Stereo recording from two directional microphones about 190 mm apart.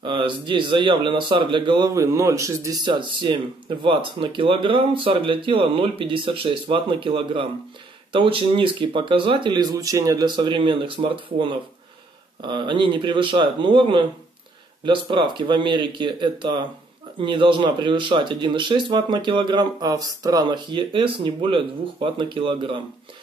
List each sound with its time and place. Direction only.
0.0 s speech: 25° right (ahead or behind)